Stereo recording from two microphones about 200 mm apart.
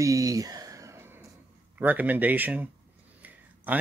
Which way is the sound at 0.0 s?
15° right (ahead or behind).